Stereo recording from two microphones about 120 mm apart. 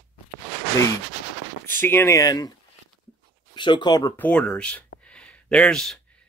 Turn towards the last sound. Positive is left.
turn(degrees=5)  # may be behind; listen again after turning